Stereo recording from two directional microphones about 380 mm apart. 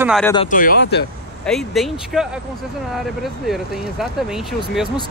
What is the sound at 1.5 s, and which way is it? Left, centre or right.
Speech, centre.